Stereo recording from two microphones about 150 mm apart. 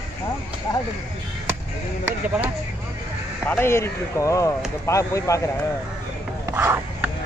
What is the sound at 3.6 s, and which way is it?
Speech, 15° left (ahead or behind).